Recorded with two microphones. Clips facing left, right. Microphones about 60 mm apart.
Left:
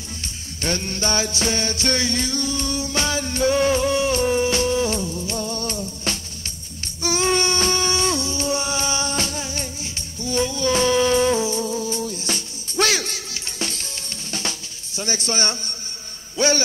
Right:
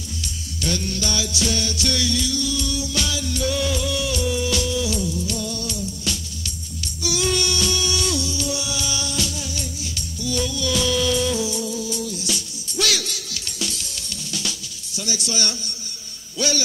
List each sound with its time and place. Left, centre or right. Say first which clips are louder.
0.6 s music: left 1 dB; left
15.0 s a man's voice: left 3 dB; left